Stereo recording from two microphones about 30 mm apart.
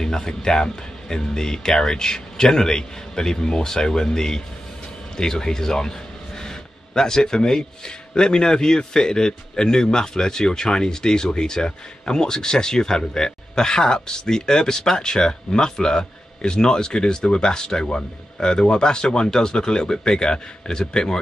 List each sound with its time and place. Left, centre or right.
0.0 s speech: left
6.4 s a sound: centre
7.3 s speech: left